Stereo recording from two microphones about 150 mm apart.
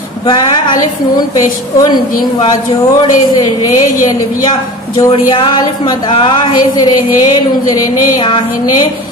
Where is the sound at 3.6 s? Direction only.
25° left (ahead or behind).